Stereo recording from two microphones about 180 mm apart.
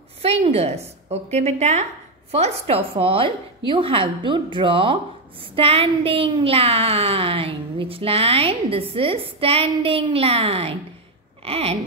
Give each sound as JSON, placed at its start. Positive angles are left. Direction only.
{"t": 0.2, "sound": "a woman's voice", "side_deg": -35}